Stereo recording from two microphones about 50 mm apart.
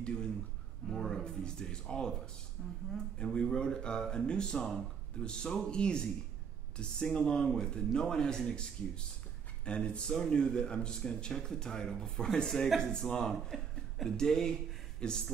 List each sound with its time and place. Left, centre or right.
0.8 s speech: centre
3.3 s speech: centre